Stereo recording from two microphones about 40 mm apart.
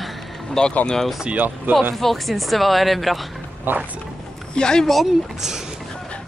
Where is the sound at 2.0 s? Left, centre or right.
Centre.